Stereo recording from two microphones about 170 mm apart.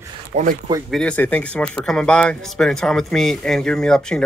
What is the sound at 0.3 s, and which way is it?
Speech, 50° right (ahead or behind).